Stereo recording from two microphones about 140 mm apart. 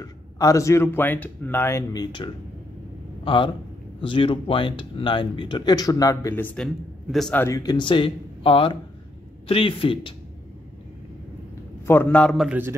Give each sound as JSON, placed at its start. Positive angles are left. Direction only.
{"t": 0.0, "sound": "speech", "side_deg": 25}
{"t": 6.6, "sound": "a man's voice", "side_deg": 0}
{"t": 7.3, "sound": "speech", "side_deg": 20}
{"t": 11.8, "sound": "a man's voice", "side_deg": 15}
{"t": 12.4, "sound": "speech", "side_deg": -15}